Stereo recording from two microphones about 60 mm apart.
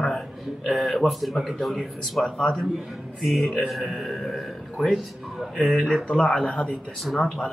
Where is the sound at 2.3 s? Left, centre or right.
Centre.